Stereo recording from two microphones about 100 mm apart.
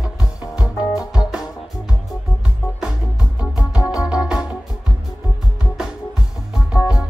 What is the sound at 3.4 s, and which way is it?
Music, 35° left (ahead or behind).